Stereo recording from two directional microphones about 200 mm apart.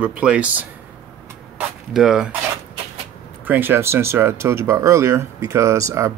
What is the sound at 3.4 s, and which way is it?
Speech, 10° right (ahead or behind).